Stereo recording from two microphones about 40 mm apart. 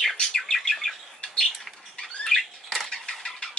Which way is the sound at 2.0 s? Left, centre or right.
Centre.